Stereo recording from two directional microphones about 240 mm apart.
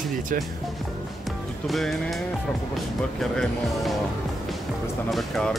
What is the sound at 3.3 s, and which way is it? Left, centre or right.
Speech, centre.